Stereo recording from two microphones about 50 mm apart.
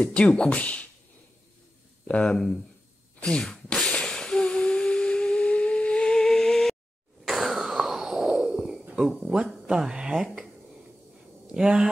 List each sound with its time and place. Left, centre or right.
0.1 s speech: centre
2.0 s speech: left
2.3 s speech: centre
3.9 s a sound: centre
7.2 s a sound: centre
9.0 s speech: centre
11.5 s speech: centre